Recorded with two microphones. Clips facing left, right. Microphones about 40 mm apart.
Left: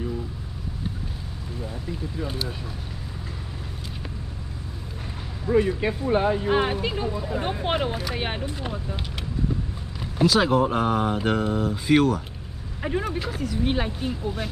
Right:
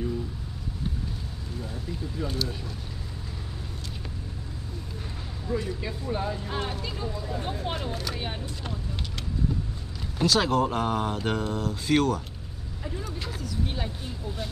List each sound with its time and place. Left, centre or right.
1.6 s speech: centre
5.5 s speech: left
10.1 s speech: centre
12.8 s speech: left